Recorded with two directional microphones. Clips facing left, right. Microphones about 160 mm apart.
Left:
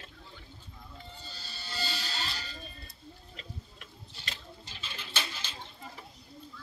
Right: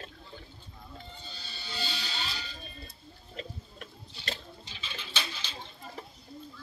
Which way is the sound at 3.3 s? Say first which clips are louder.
Right 10 dB; 40° right (ahead or behind).